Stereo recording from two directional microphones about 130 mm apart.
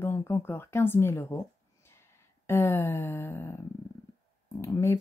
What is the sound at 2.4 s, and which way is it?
Speech, 20° left (ahead or behind).